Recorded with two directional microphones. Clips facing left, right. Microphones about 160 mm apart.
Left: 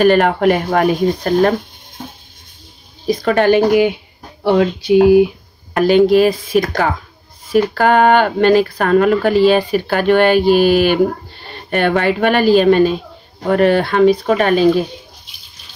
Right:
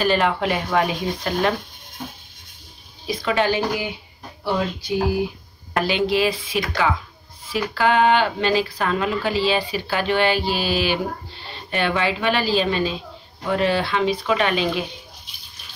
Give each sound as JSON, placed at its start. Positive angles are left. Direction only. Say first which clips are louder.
{"t": 0.0, "sound": "speech", "louder": "left 9 dB", "side_deg": 55}
{"t": 3.1, "sound": "speech", "louder": "left 8 dB", "side_deg": 45}
{"t": 5.8, "sound": "speech", "louder": "left 10 dB", "side_deg": 45}